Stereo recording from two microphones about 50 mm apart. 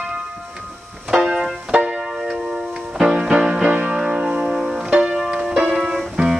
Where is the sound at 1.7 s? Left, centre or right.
Right.